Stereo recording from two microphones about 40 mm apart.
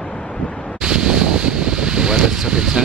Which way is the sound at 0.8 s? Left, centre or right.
Right.